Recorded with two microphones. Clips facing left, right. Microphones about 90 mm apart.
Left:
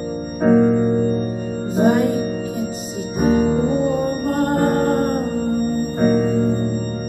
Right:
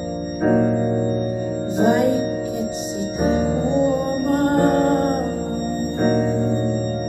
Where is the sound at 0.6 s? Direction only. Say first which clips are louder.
Left 3 dB; 50° left (ahead or behind).